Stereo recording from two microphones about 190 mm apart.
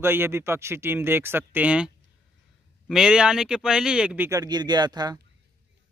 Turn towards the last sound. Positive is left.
turn(degrees=-20)  # may be behind; listen again after turning